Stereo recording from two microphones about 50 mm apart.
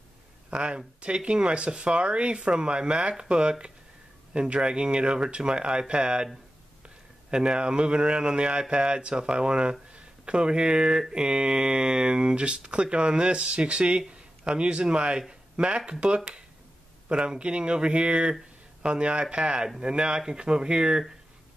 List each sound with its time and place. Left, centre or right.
0.5 s speech: centre